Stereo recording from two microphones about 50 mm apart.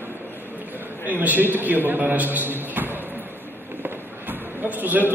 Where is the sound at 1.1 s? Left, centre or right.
Right.